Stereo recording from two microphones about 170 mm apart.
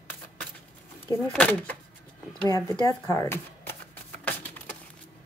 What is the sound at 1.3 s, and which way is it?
Speech, 10° left (ahead or behind).